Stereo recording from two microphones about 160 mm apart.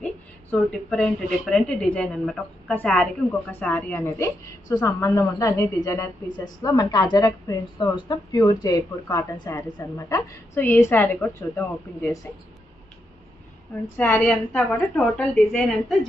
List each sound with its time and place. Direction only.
0.0 s a woman's voice: 5° left (ahead or behind)
13.9 s a woman's voice: 10° left (ahead or behind)